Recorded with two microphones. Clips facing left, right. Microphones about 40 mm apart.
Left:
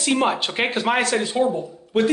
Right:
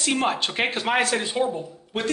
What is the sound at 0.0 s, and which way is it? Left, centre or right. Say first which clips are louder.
Speech: left 3 dB; centre.